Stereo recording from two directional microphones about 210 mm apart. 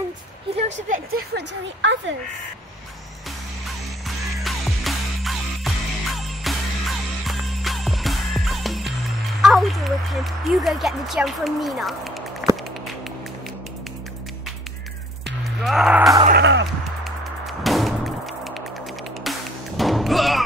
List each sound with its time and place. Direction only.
0.8 s speech: 40° right (ahead or behind); by 2.1 s 60° right (ahead or behind)
4.4 s music: centre (ahead or behind)
9.4 s speech: centre (ahead or behind)
15.2 s music: centre (ahead or behind)
16.3 s music: 55° right (ahead or behind)
17.0 s music: centre (ahead or behind)